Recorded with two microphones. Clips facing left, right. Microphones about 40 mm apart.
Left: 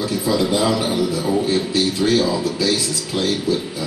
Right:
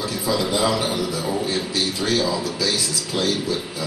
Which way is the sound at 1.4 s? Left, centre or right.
Centre.